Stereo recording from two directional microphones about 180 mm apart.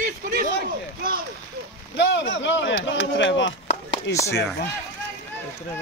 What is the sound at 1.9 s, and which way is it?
Speech, 90° left.